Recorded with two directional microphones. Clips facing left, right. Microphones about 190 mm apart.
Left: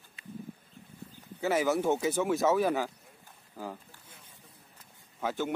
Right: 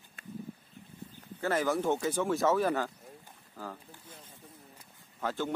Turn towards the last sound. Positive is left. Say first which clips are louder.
# left 1 dB
turn(degrees=15)  # may be behind; listen again after turning